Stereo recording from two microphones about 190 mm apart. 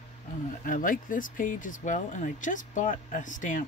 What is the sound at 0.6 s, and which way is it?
Speech, 45° left (ahead or behind).